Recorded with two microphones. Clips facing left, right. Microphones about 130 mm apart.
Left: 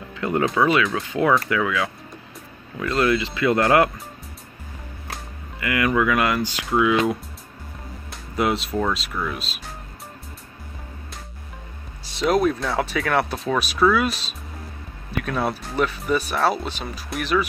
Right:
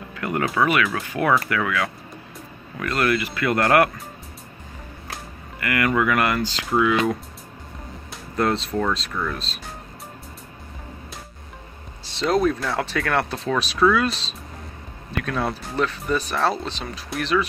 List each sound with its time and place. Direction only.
0.1 s speech: 25° left (ahead or behind)
5.6 s speech: 15° left (ahead or behind)
8.4 s speech: 10° left (ahead or behind)
12.2 s speech: 5° left (ahead or behind)
15.2 s speech: 5° left (ahead or behind)